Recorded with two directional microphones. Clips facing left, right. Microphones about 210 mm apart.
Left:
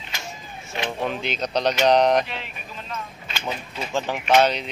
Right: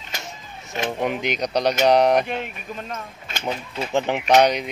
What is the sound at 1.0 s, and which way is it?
A man's voice, 15° right (ahead or behind).